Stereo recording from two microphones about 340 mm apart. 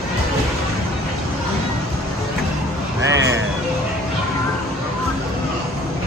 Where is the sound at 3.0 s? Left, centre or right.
Right.